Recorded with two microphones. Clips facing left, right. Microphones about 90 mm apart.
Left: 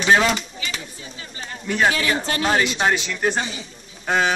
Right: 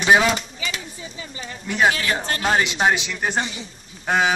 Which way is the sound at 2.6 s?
15° right (ahead or behind).